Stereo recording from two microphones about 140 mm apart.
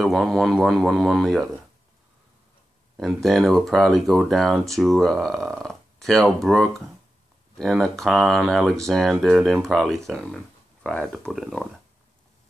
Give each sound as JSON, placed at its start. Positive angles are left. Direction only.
{"t": 0.0, "sound": "speech", "side_deg": 0}
{"t": 3.0, "sound": "speech", "side_deg": 0}